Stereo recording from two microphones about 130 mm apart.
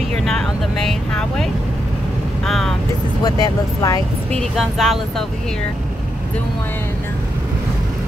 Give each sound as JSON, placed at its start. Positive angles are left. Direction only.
{"t": 0.1, "sound": "vehicle", "side_deg": 5}
{"t": 3.3, "sound": "speech", "side_deg": 30}
{"t": 4.3, "sound": "speech", "side_deg": 0}